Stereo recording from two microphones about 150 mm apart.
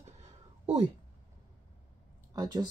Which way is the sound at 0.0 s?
40° right (ahead or behind).